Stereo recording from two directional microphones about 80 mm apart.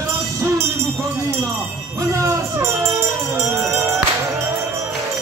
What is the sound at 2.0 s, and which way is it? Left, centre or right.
Jingle bell, right.